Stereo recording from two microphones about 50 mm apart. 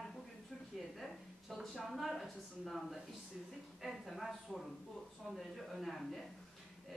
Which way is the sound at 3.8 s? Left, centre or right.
Centre.